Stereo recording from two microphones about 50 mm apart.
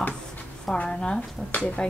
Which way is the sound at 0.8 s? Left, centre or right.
Centre.